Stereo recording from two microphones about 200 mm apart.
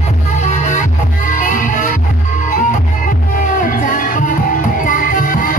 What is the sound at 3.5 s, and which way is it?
Music, 40° left (ahead or behind).